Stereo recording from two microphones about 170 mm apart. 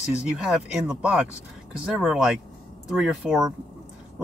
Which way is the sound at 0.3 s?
5° right (ahead or behind).